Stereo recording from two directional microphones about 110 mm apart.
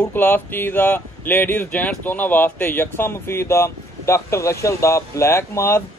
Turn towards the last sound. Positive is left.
turn(degrees=25)  # may be behind; listen again after turning